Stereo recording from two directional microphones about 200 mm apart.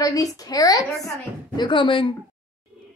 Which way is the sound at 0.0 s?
15° left (ahead or behind).